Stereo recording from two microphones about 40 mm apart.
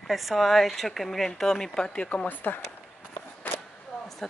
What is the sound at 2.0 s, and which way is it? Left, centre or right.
Speech, left.